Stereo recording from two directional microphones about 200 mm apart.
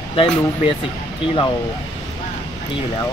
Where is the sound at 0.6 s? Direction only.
25° left (ahead or behind).